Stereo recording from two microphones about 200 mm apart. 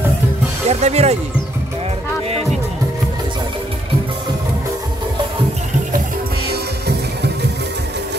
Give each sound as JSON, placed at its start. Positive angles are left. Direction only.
{"t": 0.7, "sound": "music", "side_deg": -35}